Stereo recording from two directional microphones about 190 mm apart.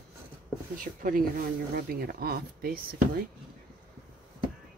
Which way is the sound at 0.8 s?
45° right (ahead or behind).